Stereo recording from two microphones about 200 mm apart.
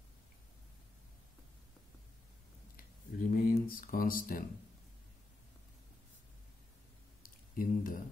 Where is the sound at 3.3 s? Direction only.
45° left (ahead or behind).